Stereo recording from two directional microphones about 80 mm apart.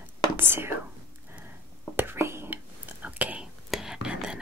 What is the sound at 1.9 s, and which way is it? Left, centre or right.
Whispering, right.